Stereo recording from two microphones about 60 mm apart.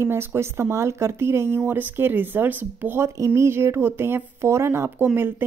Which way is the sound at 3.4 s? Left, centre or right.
Right.